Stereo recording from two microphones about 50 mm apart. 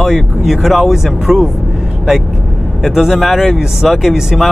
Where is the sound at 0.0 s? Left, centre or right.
Centre.